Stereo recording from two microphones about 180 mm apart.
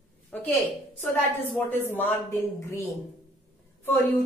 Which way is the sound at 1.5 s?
10° left (ahead or behind).